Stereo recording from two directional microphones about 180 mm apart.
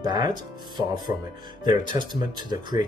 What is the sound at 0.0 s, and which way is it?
Speech, 25° right (ahead or behind).